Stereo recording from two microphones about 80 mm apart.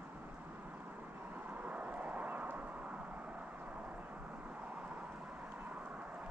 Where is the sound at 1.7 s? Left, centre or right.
Centre.